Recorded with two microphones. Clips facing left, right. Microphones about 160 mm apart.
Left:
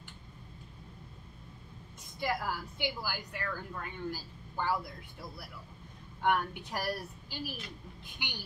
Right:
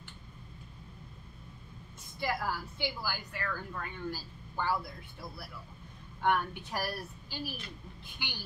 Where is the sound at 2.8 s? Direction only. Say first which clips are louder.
Even; 15° left (ahead or behind).